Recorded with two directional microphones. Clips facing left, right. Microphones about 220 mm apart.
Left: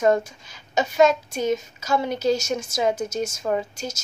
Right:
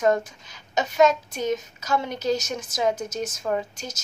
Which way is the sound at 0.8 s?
10° left (ahead or behind).